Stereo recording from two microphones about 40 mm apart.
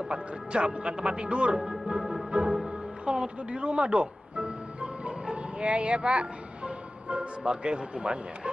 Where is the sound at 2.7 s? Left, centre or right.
Right.